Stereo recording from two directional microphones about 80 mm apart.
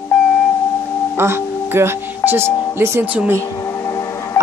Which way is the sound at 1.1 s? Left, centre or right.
Right.